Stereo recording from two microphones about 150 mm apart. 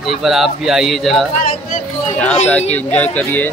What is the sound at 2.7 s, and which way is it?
Speech, 10° left (ahead or behind).